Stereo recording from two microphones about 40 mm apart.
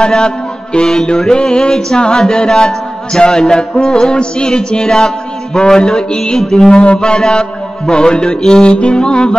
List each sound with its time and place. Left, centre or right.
0.0 s music: left
6.8 s music: left